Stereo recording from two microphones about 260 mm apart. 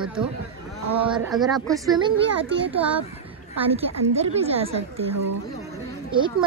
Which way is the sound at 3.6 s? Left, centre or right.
Right.